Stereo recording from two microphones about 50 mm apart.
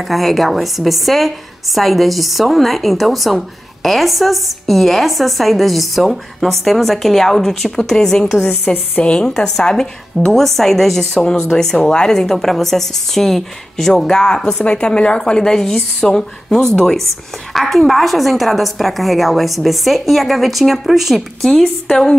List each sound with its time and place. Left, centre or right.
0.1 s a woman's voice: centre
8.7 s a woman's voice: left
9.3 s a woman's voice: centre
21.5 s speech: centre